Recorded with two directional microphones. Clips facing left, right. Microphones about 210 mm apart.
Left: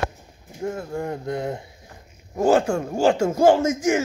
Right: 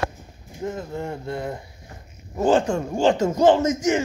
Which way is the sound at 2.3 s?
10° left (ahead or behind).